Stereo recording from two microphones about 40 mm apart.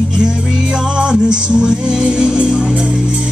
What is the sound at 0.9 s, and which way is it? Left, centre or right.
Music, right.